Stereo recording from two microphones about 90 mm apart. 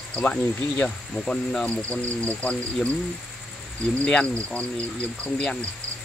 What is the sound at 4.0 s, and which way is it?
Speech, 15° left (ahead or behind).